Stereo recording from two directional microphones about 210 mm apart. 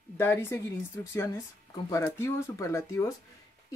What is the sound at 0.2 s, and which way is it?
Speech, 10° left (ahead or behind).